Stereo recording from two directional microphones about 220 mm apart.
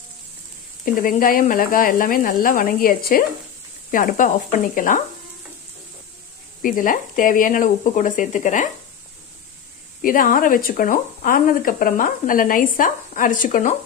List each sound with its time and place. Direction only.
0.8 s speech: 40° left (ahead or behind)
6.6 s speech: 40° left (ahead or behind)
10.0 s speech: 40° left (ahead or behind)